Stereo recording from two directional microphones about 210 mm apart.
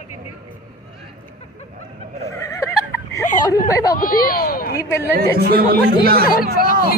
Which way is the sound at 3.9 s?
45° left (ahead or behind).